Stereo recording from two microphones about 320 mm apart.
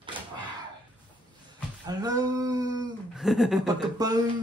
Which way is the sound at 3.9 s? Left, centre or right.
Centre.